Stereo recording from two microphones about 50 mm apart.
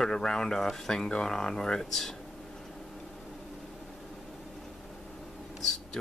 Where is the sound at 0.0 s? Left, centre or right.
Centre.